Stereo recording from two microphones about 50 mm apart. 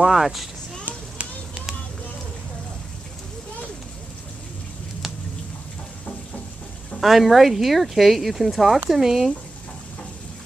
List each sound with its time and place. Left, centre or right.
0.0 s speech: centre
0.8 s children playing: right
7.0 s speech: centre